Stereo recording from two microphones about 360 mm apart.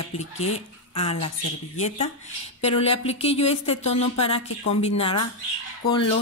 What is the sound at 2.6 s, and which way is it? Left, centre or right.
Speech, centre.